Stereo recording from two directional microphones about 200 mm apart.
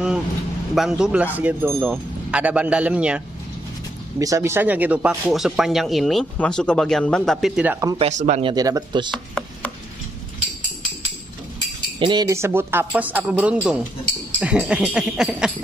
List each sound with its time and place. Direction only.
0.7 s speech: 5° right (ahead or behind)
4.2 s speech: 15° right (ahead or behind)
8.0 s speech: 35° right (ahead or behind); by 9.1 s 20° right (ahead or behind)
9.1 s chopping: 5° left (ahead or behind)
12.0 s speech: 20° right (ahead or behind); by 15.5 s 5° right (ahead or behind)